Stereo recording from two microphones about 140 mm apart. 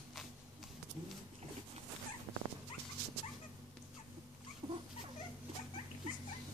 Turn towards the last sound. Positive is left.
turn(degrees=-30)  # may be behind; listen again after turning